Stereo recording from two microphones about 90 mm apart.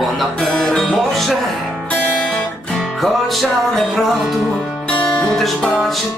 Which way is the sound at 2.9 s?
Centre (ahead or behind).